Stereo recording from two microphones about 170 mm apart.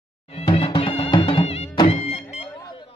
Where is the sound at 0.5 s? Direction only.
30° left (ahead or behind).